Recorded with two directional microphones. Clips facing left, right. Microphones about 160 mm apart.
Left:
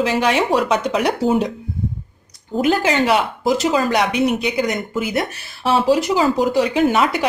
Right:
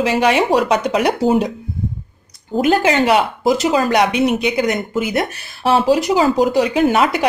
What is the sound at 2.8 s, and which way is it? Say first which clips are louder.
Speech: right 3 dB; 15° right (ahead or behind).